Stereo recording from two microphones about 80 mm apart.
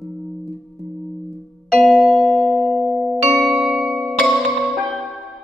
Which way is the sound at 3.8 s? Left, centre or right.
Centre.